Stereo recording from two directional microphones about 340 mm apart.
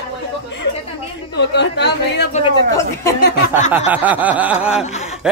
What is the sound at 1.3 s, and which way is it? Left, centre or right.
Speech, left.